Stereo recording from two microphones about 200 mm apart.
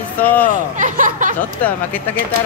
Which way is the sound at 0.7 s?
40° right (ahead or behind).